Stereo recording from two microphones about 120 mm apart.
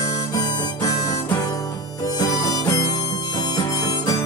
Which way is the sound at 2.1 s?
30° left (ahead or behind).